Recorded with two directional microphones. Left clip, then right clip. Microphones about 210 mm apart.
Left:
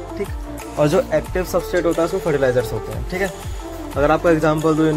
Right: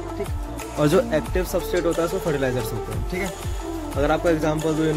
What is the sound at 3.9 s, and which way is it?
Speech, 5° right (ahead or behind).